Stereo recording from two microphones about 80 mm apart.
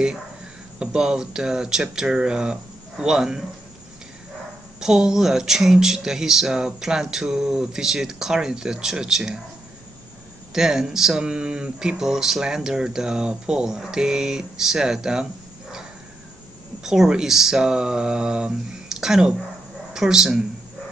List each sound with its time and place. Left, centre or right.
0.7 s speech: centre
4.7 s speech: centre
10.5 s speech: centre
16.8 s speech: centre